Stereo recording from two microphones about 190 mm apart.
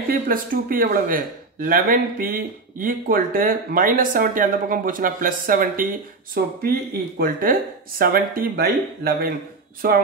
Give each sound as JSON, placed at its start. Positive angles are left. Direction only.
{"t": 0.1, "sound": "speech", "side_deg": -50}